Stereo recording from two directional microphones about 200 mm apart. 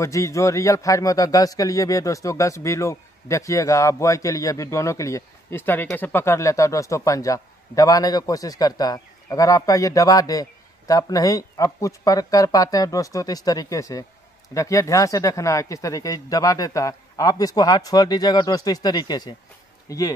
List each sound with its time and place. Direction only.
0.0 s a man's voice: 15° left (ahead or behind)